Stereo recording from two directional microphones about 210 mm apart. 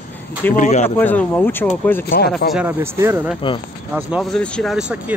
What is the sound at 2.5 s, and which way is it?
Speech, 10° right (ahead or behind).